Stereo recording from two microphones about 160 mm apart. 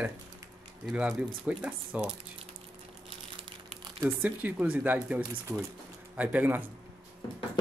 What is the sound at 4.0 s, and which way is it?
Speech, 10° right (ahead or behind).